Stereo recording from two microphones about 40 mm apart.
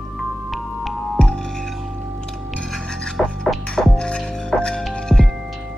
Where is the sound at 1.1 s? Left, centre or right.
Centre.